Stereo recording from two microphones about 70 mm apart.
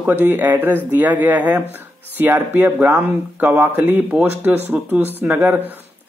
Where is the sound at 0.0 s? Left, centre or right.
Right.